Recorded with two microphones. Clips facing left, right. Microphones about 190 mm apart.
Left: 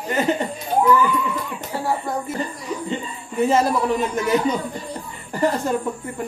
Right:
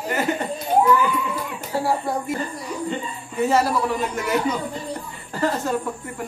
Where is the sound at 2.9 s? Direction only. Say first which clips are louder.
Left 2 dB; 20° left (ahead or behind).